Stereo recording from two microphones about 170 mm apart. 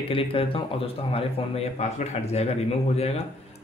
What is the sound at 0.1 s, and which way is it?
Speech, 30° left (ahead or behind).